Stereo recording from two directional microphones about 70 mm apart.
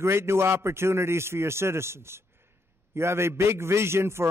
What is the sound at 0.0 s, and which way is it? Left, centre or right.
A man's voice, right.